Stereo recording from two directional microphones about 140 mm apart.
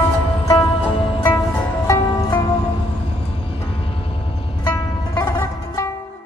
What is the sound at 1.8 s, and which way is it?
Music, 20° left (ahead or behind).